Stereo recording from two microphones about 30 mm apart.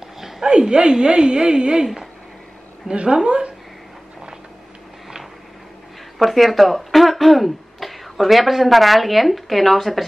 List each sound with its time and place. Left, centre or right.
0.5 s a woman's voice: right
2.9 s a woman's voice: right
6.1 s speech: centre